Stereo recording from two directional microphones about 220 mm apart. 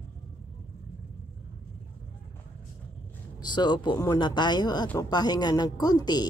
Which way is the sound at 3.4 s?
20° left (ahead or behind).